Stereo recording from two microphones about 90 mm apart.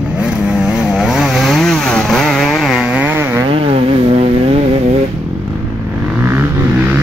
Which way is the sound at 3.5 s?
90° right.